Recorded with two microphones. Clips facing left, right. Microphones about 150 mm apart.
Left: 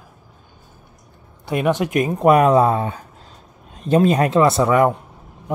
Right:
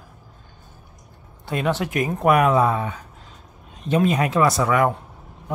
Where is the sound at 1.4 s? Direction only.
15° left (ahead or behind).